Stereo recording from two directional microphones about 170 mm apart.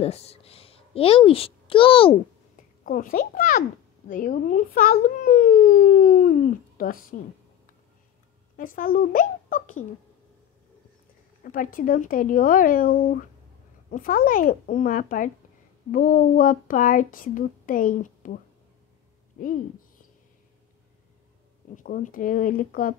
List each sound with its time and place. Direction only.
0.0 s a child's voice: 35° left (ahead or behind)
2.5 s a child's voice: 55° left (ahead or behind)
8.5 s speech: 55° left (ahead or behind)
11.4 s speech: 55° left (ahead or behind)
21.7 s speech: 50° left (ahead or behind)